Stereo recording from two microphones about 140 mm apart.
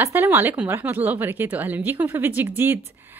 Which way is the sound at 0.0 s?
15° right (ahead or behind).